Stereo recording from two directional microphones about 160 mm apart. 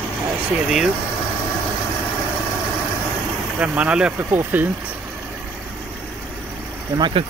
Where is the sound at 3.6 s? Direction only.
10° right (ahead or behind).